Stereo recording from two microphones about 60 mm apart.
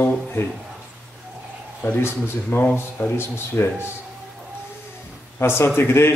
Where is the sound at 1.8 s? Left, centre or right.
Left.